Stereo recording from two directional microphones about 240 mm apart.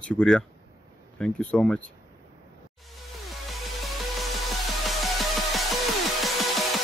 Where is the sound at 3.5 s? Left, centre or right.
Centre.